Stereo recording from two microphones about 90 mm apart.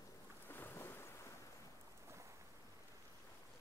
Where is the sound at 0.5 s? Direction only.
25° left (ahead or behind).